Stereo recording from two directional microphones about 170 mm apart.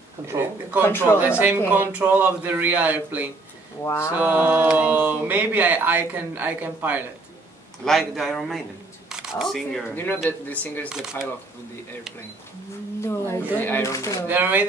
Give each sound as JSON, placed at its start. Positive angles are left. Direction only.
{"t": 0.3, "sound": "speech", "side_deg": -10}
{"t": 0.8, "sound": "speech", "side_deg": 15}
{"t": 1.7, "sound": "speech", "side_deg": -10}
{"t": 3.8, "sound": "speech", "side_deg": 15}
{"t": 4.1, "sound": "speech", "side_deg": -10}
{"t": 7.8, "sound": "speech", "side_deg": 0}
{"t": 10.9, "sound": "speech", "side_deg": -5}
{"t": 13.0, "sound": "speech", "side_deg": 15}
{"t": 14.2, "sound": "speech", "side_deg": -10}